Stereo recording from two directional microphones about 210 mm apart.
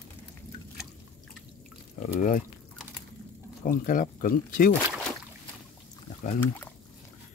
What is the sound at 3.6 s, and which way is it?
Speech, 40° left (ahead or behind).